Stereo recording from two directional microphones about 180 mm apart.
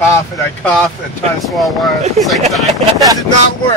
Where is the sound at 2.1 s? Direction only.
Centre (ahead or behind).